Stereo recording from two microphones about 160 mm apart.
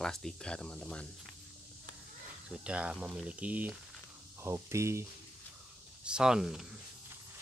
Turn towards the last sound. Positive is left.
turn(degrees=-5)  # may be behind; listen again after turning